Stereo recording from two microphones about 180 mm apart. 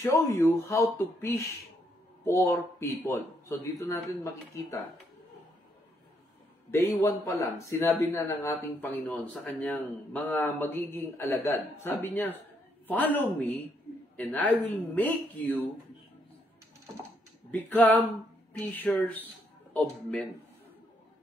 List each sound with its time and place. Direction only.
0.0 s a man's voice: 15° left (ahead or behind)
6.7 s a man's voice: 15° left (ahead or behind)
17.5 s a man's voice: 10° left (ahead or behind)